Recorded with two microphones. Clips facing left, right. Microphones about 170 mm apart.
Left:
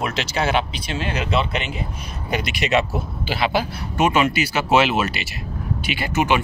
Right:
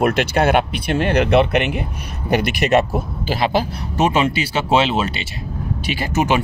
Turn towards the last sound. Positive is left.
turn(degrees=-40)  # may be behind; listen again after turning